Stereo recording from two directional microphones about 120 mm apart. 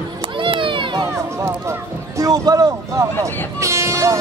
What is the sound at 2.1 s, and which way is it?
Speech, 30° right (ahead or behind).